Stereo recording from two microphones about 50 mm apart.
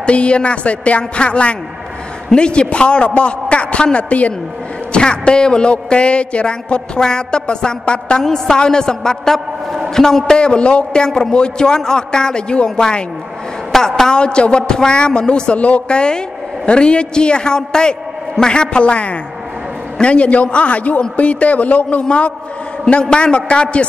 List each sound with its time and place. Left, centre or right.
0.0 s a woman's voice: left